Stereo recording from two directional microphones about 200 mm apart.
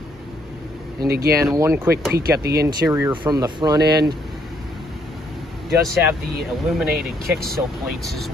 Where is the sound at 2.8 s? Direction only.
15° right (ahead or behind).